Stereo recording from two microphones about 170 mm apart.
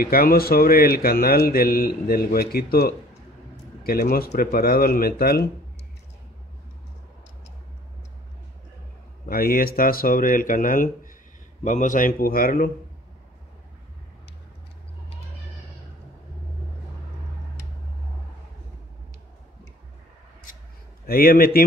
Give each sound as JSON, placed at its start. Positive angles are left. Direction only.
{"t": 0.0, "sound": "speech", "side_deg": 60}
{"t": 9.2, "sound": "speech", "side_deg": 60}
{"t": 21.1, "sound": "speech", "side_deg": 60}